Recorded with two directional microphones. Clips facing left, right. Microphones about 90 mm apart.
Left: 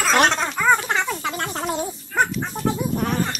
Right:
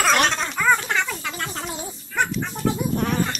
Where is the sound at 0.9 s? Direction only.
35° left (ahead or behind).